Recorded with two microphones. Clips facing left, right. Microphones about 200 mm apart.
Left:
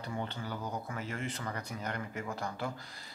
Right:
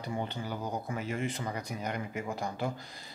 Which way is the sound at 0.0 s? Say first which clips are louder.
Right 3 dB; 15° right (ahead or behind).